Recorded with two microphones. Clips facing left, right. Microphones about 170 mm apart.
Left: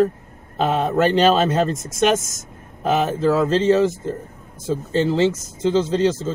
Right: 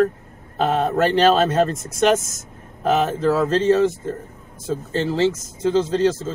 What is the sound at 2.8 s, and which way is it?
Speech, 15° left (ahead or behind).